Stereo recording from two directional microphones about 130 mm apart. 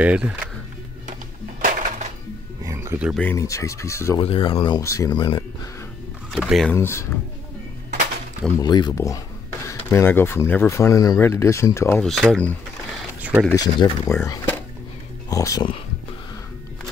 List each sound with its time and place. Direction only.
0.0 s speech: 10° right (ahead or behind)
1.6 s music: 90° right; by 2.1 s 70° right (ahead or behind)
2.6 s a sound: 20° right (ahead or behind)
3.3 s speech: 25° left (ahead or behind)
4.2 s speech: 45° left (ahead or behind)
4.7 s speech: 25° left (ahead or behind)
6.3 s speech: centre (ahead or behind)
6.7 s speech: 20° left (ahead or behind)
8.5 s speech: 35° left (ahead or behind)
12.0 s speech: 5° left (ahead or behind)
13.2 s speech: 10° right (ahead or behind)
13.6 s speech: 25° left (ahead or behind)